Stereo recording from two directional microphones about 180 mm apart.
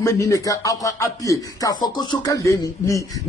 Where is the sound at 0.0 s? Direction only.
20° left (ahead or behind).